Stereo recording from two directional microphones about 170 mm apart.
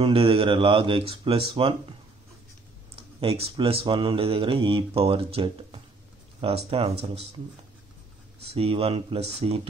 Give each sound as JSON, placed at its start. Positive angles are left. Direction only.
{"t": 0.0, "sound": "speech", "side_deg": -35}
{"t": 3.2, "sound": "speech", "side_deg": -35}
{"t": 8.5, "sound": "speech", "side_deg": -35}